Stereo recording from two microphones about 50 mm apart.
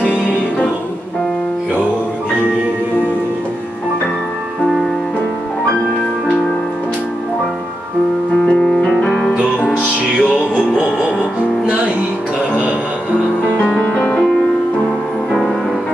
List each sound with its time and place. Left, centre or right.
0.0 s music: left
8.5 s music: centre
9.3 s music: right
13.8 s music: left